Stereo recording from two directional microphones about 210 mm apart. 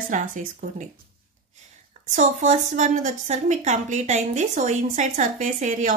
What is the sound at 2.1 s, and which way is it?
A woman's voice, 35° right (ahead or behind).